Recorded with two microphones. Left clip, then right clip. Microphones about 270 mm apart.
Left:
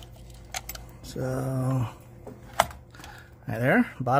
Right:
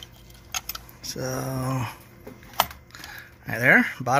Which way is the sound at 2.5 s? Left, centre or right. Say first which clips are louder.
Even; centre.